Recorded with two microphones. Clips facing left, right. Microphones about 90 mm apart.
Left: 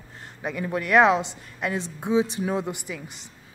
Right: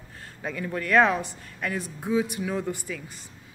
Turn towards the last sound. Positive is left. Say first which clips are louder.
# even
turn(degrees=20)  # may be behind; listen again after turning